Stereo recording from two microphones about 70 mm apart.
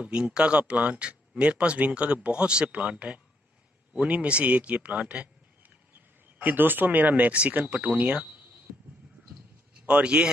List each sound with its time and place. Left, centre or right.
0.0 s speech: centre
9.8 s speech: centre